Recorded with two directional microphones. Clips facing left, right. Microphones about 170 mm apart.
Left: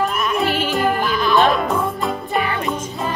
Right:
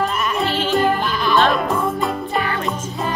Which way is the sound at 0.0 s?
Centre (ahead or behind).